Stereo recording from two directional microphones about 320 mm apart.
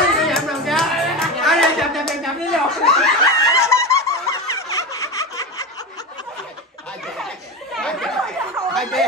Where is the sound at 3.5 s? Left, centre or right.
Centre.